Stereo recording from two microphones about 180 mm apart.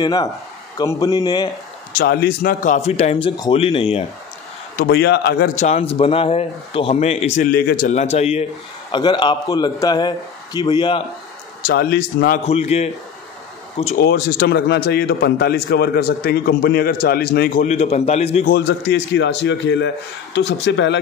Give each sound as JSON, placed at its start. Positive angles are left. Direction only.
{"t": 0.0, "sound": "a man's voice", "side_deg": 20}
{"t": 1.9, "sound": "speech", "side_deg": 55}
{"t": 4.7, "sound": "a man's voice", "side_deg": 65}
{"t": 5.6, "sound": "speech", "side_deg": 35}
{"t": 7.5, "sound": "a man's voice", "side_deg": 60}
{"t": 7.9, "sound": "speech", "side_deg": 35}
{"t": 8.9, "sound": "a man's voice", "side_deg": 25}
{"t": 11.6, "sound": "a man's voice", "side_deg": 60}
{"t": 12.4, "sound": "speech", "side_deg": 35}
{"t": 13.9, "sound": "a man's voice", "side_deg": 65}
{"t": 17.6, "sound": "speech", "side_deg": 35}
{"t": 18.5, "sound": "a man's voice", "side_deg": 70}